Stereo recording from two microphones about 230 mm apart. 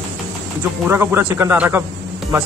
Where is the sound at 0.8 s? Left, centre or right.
Centre.